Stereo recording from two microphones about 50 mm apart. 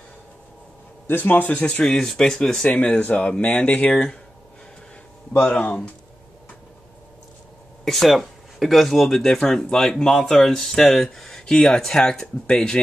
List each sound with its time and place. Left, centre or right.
1.0 s speech: left
1.6 s speech: centre
3.9 s speech: centre
5.4 s speech: left
7.8 s speech: centre